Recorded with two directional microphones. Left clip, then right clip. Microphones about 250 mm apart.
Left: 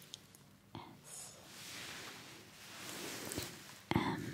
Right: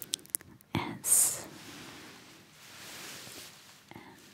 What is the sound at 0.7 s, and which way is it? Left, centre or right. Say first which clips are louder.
Whispering: right 17 dB; right.